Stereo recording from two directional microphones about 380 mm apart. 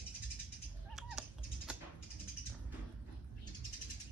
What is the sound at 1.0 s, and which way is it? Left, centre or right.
Cat, centre.